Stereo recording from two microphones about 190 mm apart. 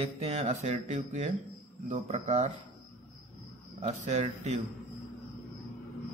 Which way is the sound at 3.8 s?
35° right (ahead or behind).